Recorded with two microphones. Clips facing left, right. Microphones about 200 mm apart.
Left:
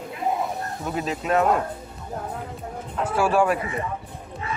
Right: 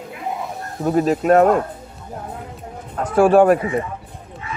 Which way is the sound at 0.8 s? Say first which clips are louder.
Right 11 dB; 50° right (ahead or behind).